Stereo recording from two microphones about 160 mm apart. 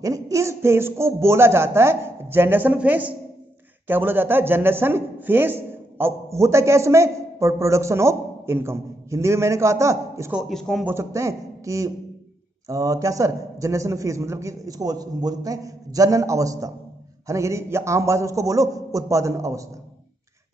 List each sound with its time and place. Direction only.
0.0 s a man's voice: 20° right (ahead or behind)
10.3 s a man's voice: 5° left (ahead or behind)
10.9 s a man's voice: 15° right (ahead or behind)